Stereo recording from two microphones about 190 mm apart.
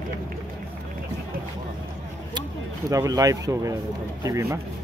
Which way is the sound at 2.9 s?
20° right (ahead or behind).